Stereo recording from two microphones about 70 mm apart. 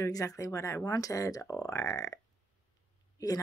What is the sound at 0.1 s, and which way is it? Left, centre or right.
Speech, left.